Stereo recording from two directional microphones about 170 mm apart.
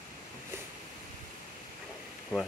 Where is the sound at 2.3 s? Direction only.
Centre (ahead or behind).